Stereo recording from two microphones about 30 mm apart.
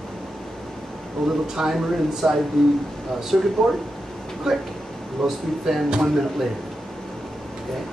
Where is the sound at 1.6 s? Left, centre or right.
Centre; by 3.5 s right.